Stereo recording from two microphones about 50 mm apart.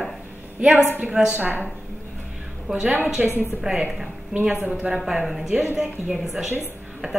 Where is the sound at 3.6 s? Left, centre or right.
Centre.